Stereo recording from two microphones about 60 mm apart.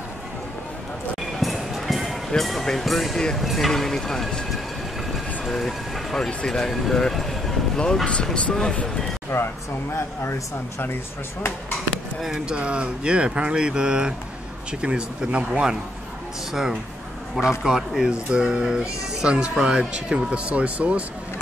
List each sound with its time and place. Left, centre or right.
1.4 s music: centre
3.3 s speech: centre
9.3 s speech: left
11.9 s speech: centre
17.4 s speech: centre